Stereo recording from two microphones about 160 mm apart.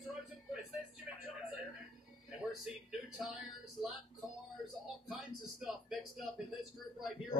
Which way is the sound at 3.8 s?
40° left (ahead or behind).